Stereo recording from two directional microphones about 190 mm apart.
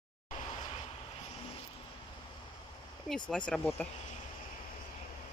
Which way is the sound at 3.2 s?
5° left (ahead or behind).